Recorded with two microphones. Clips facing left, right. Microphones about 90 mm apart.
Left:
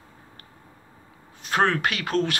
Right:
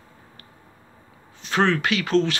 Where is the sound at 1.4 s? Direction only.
45° left (ahead or behind).